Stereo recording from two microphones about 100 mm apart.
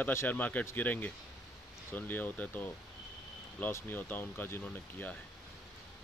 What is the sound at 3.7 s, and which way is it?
Speech, 20° left (ahead or behind).